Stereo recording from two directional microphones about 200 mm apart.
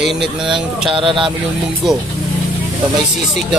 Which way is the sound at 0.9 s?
25° right (ahead or behind).